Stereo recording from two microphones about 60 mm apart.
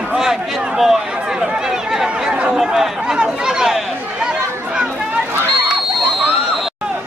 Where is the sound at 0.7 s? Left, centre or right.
Centre.